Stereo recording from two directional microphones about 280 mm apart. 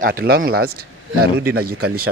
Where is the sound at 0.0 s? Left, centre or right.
Right.